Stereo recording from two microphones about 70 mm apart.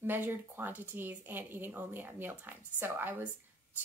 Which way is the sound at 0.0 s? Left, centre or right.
Right.